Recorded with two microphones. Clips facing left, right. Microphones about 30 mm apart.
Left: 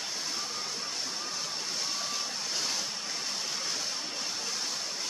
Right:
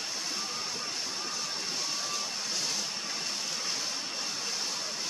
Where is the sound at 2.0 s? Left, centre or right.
Centre.